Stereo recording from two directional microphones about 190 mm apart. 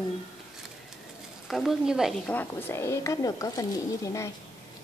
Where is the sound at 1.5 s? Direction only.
Centre (ahead or behind).